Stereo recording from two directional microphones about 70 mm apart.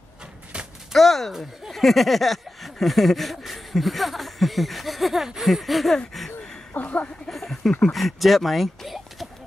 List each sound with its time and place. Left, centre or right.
0.9 s speech: centre
6.7 s speech: left
7.2 s a sound: centre
7.8 s speech: centre